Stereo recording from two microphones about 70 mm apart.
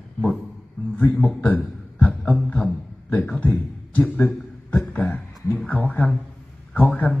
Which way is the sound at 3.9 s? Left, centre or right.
Centre.